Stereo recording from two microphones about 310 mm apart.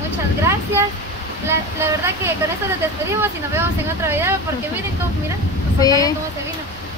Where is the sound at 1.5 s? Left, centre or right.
Centre.